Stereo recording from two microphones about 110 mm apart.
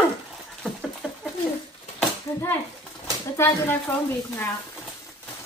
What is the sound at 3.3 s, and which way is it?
Speech, 20° left (ahead or behind).